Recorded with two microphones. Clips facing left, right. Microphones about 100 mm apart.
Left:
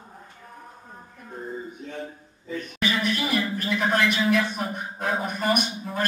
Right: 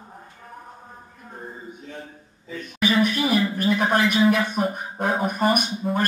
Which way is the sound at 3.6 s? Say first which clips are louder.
Right 3 dB; 50° right (ahead or behind).